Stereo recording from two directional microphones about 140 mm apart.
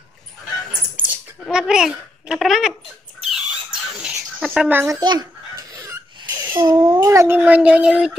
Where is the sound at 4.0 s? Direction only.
5° right (ahead or behind).